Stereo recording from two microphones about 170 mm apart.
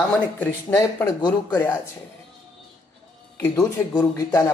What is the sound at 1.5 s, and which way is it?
Speech, 10° left (ahead or behind).